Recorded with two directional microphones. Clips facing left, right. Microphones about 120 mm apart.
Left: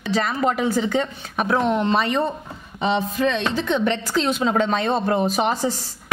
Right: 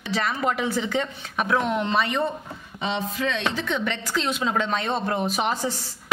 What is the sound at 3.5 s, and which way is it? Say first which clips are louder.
A woman's voice: left 6 dB; 30° left (ahead or behind).